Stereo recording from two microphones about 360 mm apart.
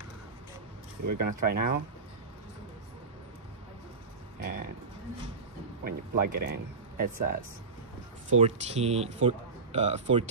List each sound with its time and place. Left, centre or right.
1.0 s speech: right
1.3 s speech: right
4.4 s a sound: right
5.9 s speech: right
7.0 s speech: right
8.4 s speech: centre